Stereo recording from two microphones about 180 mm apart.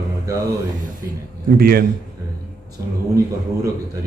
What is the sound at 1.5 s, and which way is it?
Speech, 55° right (ahead or behind).